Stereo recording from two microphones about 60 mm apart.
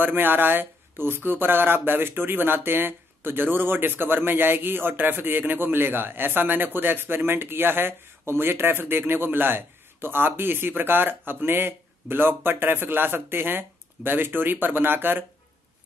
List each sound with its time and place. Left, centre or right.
0.0 s speech: right